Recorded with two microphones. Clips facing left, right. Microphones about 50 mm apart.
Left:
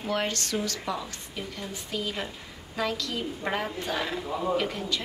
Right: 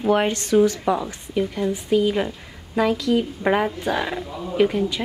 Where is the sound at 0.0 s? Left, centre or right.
Right.